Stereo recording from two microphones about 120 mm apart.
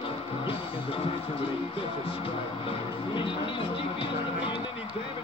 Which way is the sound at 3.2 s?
45° left (ahead or behind).